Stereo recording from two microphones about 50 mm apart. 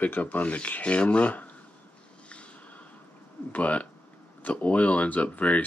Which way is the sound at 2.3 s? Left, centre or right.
Left.